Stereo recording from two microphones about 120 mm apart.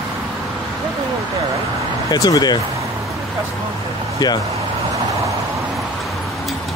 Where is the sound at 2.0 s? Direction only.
30° left (ahead or behind).